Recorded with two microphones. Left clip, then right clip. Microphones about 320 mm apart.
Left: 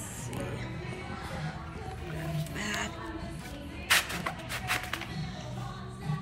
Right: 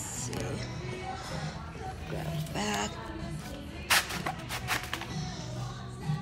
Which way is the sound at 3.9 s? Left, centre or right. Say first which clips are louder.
Even; centre.